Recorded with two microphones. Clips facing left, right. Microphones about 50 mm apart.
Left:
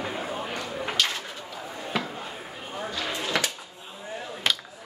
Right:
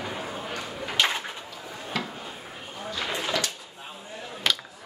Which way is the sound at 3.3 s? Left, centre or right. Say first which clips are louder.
Left 5 dB; left.